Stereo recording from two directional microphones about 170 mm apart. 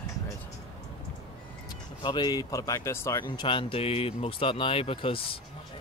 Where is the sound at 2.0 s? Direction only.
25° left (ahead or behind).